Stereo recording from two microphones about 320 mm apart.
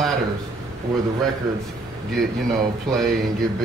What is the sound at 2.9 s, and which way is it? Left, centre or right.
Speech, centre.